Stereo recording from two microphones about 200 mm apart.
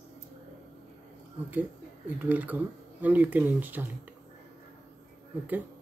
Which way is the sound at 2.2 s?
10° right (ahead or behind).